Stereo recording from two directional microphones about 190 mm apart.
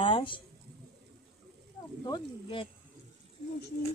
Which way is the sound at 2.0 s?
25° left (ahead or behind).